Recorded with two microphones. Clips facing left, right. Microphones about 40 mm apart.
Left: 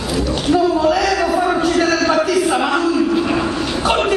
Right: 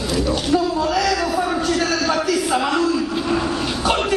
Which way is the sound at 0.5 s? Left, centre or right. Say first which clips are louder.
Left 5 dB; centre.